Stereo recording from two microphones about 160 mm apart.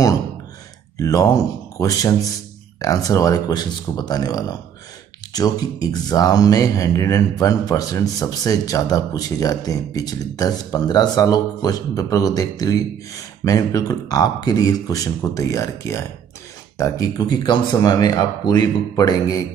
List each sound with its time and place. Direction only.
0.9 s speech: 20° left (ahead or behind)